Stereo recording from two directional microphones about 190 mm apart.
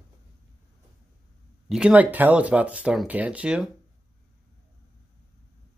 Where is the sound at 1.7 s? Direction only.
5° right (ahead or behind).